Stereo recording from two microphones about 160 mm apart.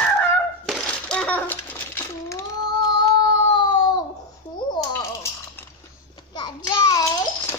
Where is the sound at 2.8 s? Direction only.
30° left (ahead or behind).